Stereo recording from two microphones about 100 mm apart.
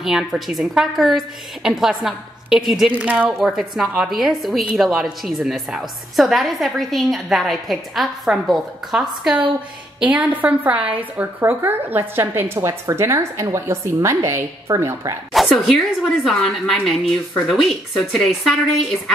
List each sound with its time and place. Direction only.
0.0 s a woman's voice: 5° right (ahead or behind); by 15.1 s 30° right (ahead or behind)
15.3 s a woman's voice: centre (ahead or behind)